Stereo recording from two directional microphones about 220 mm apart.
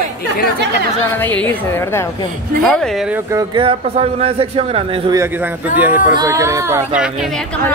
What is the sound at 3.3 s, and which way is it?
A man's voice, 20° right (ahead or behind).